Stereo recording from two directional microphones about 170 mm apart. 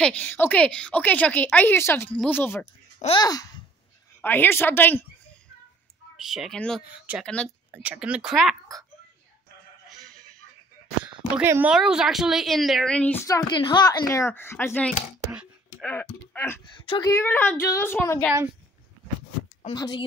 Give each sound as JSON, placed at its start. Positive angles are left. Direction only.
{"t": 0.0, "sound": "a woman's voice", "side_deg": 10}
{"t": 4.2, "sound": "a woman's voice", "side_deg": 10}
{"t": 6.1, "sound": "speech", "side_deg": 0}
{"t": 11.3, "sound": "speech", "side_deg": -10}
{"t": 13.3, "sound": "a woman's voice", "side_deg": 25}
{"t": 16.6, "sound": "speech", "side_deg": 30}
{"t": 17.1, "sound": "a woman's voice", "side_deg": 15}
{"t": 19.7, "sound": "speech", "side_deg": 25}